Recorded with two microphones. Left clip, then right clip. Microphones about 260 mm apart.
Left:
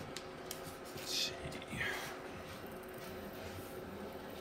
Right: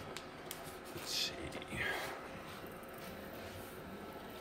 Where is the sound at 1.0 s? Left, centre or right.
Right.